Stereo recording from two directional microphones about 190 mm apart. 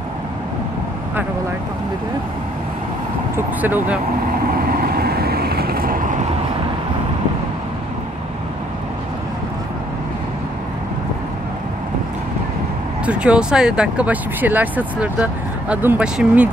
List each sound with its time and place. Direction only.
3.3 s speech: 10° right (ahead or behind)
4.6 s vehicle: 50° right (ahead or behind)
13.0 s speech: 5° right (ahead or behind)